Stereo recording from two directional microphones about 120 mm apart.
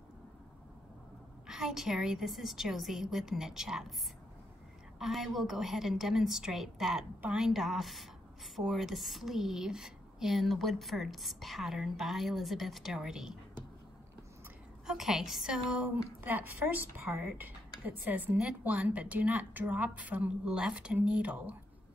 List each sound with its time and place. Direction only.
1.5 s a woman's voice: 5° right (ahead or behind)
4.9 s a woman's voice: centre (ahead or behind)
14.9 s a woman's voice: 5° right (ahead or behind)